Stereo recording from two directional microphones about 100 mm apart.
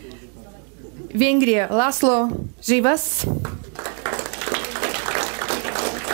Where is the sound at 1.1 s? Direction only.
15° right (ahead or behind).